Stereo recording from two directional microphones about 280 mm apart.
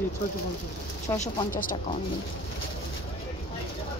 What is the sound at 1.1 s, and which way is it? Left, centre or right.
Speech, left.